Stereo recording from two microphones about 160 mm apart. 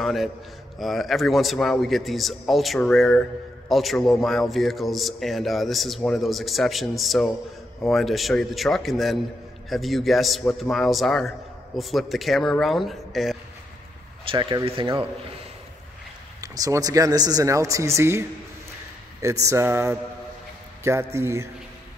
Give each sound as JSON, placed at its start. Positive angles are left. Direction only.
{"t": 0.0, "sound": "a man's voice", "side_deg": 0}
{"t": 14.3, "sound": "speech", "side_deg": -30}
{"t": 16.3, "sound": "speech", "side_deg": -20}
{"t": 19.4, "sound": "speech", "side_deg": -15}